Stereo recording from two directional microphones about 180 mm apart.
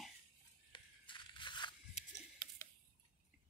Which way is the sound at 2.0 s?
40° left (ahead or behind).